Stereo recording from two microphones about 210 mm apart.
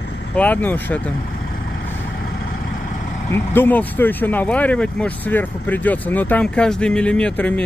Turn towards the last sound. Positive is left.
turn(degrees=5)  # may be behind; listen again after turning